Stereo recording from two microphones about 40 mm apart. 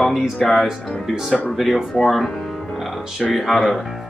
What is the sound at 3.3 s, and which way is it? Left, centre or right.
Speech, centre.